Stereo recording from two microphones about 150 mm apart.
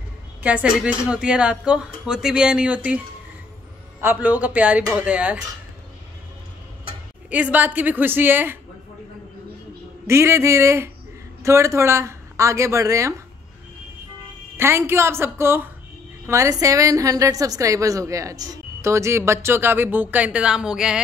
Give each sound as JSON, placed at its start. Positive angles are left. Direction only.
{"t": 0.4, "sound": "speech", "side_deg": -10}
{"t": 4.0, "sound": "speech", "side_deg": -10}
{"t": 7.2, "sound": "speech", "side_deg": -10}
{"t": 10.0, "sound": "a woman's voice", "side_deg": -15}
{"t": 14.6, "sound": "a woman's voice", "side_deg": -15}